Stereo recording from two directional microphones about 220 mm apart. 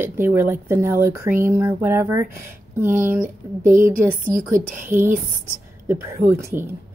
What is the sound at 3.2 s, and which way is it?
Speech, 40° right (ahead or behind).